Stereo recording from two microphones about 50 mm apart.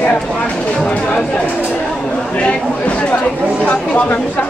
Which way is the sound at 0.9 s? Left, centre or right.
Left.